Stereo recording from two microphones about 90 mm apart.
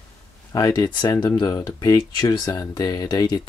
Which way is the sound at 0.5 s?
40° left (ahead or behind).